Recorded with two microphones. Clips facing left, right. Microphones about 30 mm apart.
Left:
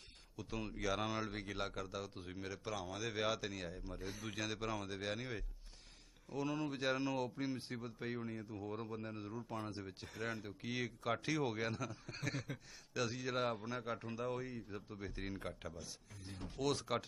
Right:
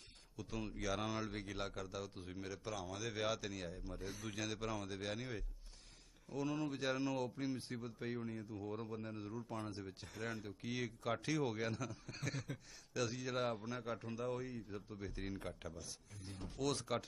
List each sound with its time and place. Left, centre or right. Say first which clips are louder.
0.4 s speech: left 1 dB; centre